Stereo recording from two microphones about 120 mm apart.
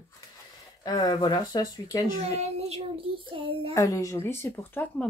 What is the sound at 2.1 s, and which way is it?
A child's voice, 65° right (ahead or behind).